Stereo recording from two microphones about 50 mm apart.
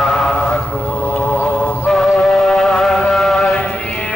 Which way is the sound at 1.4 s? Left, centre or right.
Left.